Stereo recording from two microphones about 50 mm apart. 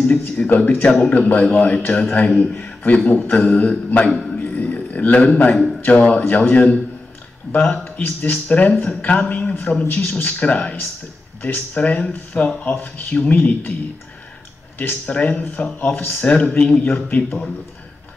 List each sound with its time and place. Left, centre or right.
0.4 s a man's voice: left
14.8 s speech: left